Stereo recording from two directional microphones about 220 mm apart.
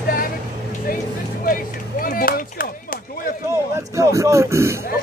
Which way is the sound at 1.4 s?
40° left (ahead or behind).